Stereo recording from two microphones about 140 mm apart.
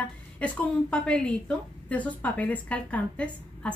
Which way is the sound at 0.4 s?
10° left (ahead or behind).